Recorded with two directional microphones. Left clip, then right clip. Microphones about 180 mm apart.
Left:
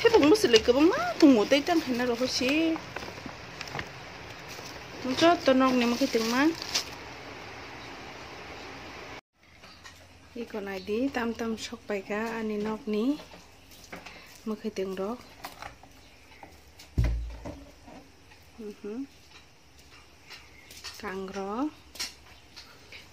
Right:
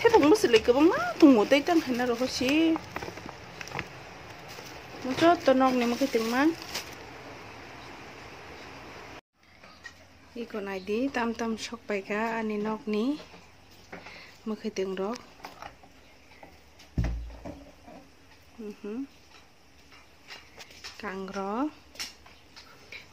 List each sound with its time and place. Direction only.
0.0 s speech: centre (ahead or behind)
2.2 s speech: 15° right (ahead or behind)
5.1 s speech: centre (ahead or behind)
9.8 s speech: 5° right (ahead or behind)
13.8 s a sound: centre (ahead or behind)
16.9 s a sound: 20° right (ahead or behind)
18.9 s speech: 5° right (ahead or behind)
20.8 s speech: centre (ahead or behind)